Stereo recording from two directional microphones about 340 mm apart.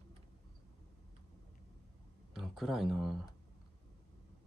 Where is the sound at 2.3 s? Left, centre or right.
Centre.